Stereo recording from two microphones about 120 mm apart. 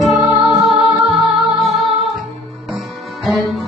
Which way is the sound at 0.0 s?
Centre (ahead or behind).